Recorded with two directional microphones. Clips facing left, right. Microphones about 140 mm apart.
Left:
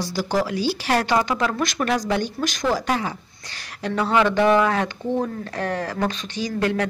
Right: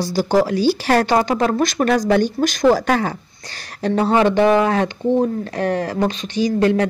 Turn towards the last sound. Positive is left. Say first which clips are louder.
# right 7 dB
turn(degrees=-30)  # may be behind; listen again after turning